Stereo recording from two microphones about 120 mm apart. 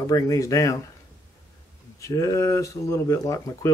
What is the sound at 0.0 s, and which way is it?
Speech, 30° left (ahead or behind).